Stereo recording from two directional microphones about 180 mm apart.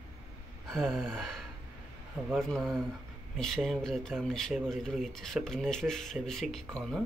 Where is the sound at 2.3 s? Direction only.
Centre (ahead or behind).